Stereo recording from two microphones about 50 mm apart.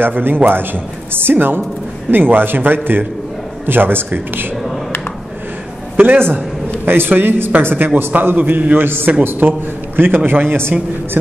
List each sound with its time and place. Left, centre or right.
0.0 s a man's voice: right
5.9 s a man's voice: right